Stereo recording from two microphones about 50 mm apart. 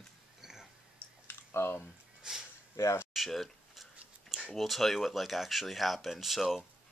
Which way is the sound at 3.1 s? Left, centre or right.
Centre.